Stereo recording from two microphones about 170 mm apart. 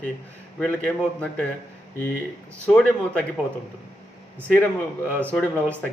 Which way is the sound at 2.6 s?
5° left (ahead or behind).